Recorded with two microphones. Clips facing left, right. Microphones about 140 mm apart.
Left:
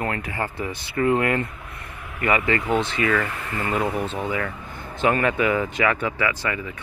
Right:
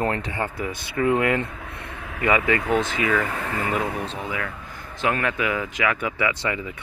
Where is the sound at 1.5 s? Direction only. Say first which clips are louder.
Right 3 dB; 90° right.